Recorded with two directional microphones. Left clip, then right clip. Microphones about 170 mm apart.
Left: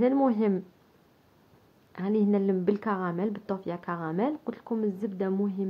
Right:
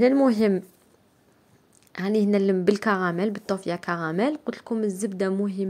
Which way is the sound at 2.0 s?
25° right (ahead or behind).